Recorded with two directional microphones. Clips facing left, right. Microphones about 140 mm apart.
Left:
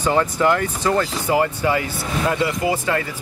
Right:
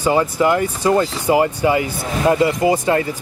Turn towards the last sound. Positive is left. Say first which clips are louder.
# right 5 dB
turn(degrees=-25)  # may be behind; listen again after turning